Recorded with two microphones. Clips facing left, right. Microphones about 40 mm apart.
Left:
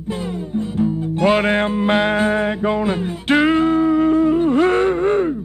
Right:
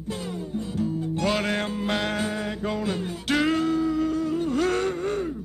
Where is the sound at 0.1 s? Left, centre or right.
Left.